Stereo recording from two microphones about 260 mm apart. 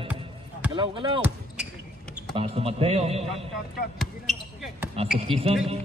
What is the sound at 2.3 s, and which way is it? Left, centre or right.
A man's voice, right.